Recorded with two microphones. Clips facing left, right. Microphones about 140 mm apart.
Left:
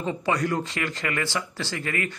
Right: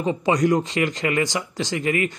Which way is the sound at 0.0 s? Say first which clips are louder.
Right 6 dB; 15° right (ahead or behind).